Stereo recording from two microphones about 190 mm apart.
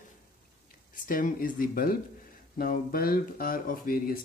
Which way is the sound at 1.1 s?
45° left (ahead or behind).